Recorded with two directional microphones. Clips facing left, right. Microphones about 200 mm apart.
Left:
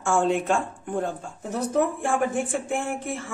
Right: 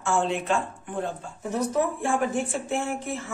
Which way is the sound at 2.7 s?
55° left (ahead or behind).